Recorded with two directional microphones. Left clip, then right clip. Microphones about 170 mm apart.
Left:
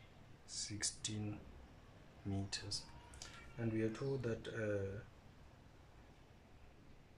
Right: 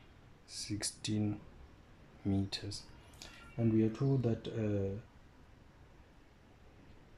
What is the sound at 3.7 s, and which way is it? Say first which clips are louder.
Speech: right 6 dB; 20° right (ahead or behind).